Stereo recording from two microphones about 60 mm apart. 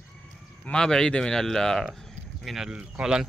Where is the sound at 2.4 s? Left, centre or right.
Centre.